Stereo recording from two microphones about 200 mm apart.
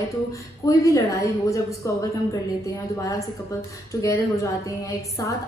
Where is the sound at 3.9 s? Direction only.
15° left (ahead or behind).